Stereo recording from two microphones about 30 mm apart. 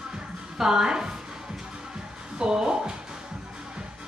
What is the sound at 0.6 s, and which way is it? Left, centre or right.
Speech, right.